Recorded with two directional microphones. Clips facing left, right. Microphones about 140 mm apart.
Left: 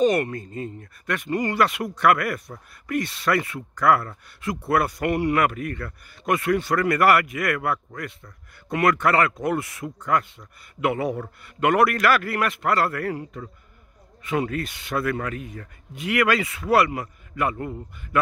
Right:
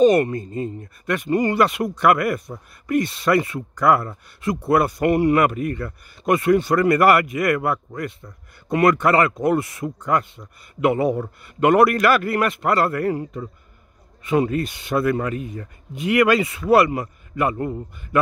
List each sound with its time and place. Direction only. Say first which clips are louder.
0.0 s speech: right 5 dB; 25° right (ahead or behind)
9.9 s speech: right 1 dB; 20° right (ahead or behind)